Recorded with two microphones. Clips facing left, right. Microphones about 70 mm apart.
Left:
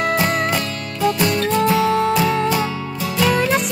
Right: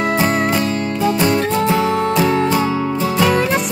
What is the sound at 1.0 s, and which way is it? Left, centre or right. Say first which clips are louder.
Music: right 1 dB; right.